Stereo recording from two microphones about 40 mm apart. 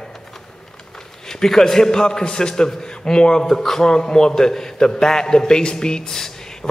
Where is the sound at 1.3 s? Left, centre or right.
Centre.